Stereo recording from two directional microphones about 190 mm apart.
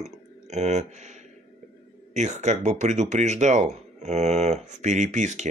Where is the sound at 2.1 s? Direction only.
40° right (ahead or behind).